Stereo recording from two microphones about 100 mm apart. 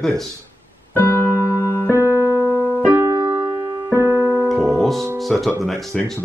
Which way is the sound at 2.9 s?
25° right (ahead or behind).